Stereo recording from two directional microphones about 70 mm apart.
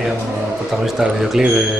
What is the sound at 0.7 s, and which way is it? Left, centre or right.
Speech, centre.